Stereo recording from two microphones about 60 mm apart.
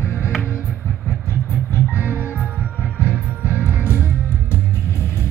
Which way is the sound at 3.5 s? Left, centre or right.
Left.